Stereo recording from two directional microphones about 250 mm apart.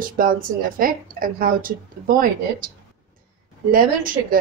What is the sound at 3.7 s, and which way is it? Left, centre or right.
Speech, right.